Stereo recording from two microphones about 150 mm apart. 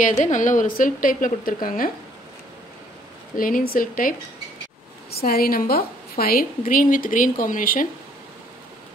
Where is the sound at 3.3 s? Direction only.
70° left (ahead or behind).